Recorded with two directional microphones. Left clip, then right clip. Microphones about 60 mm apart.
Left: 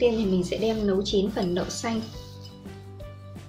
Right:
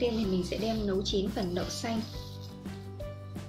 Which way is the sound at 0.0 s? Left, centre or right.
Centre.